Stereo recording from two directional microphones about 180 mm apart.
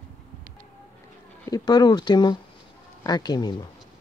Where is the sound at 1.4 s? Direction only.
20° left (ahead or behind).